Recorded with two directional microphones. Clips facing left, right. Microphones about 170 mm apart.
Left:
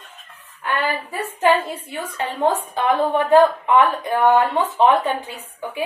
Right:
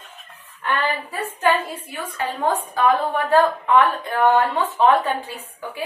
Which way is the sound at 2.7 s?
20° left (ahead or behind).